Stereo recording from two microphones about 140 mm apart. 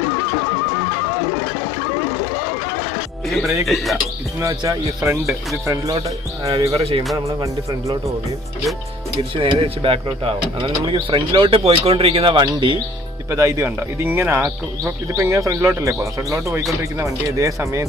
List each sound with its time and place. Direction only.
3.3 s speech: centre (ahead or behind)
4.4 s speech: 20° right (ahead or behind)
6.7 s speech: 45° right (ahead or behind)
9.3 s speech: 40° right (ahead or behind)
13.3 s speech: 20° right (ahead or behind)